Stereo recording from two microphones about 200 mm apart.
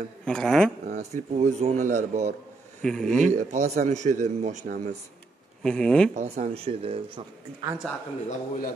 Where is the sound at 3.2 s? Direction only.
35° right (ahead or behind).